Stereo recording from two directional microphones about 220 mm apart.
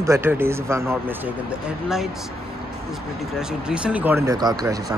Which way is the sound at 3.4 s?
5° right (ahead or behind).